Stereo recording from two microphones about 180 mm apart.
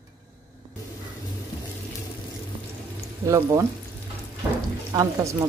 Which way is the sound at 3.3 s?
15° right (ahead or behind).